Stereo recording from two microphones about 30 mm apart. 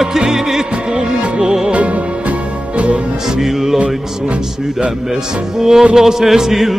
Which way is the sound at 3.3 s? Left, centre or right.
Centre.